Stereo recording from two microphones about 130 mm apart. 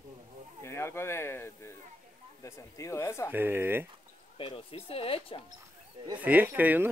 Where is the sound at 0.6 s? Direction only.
20° left (ahead or behind).